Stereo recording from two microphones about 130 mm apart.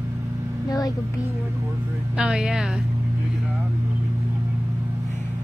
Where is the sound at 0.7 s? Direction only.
30° left (ahead or behind).